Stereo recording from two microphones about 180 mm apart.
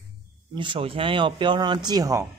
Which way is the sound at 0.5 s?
30° right (ahead or behind).